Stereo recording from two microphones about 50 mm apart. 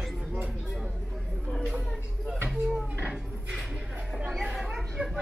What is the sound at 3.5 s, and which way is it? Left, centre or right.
Music, centre.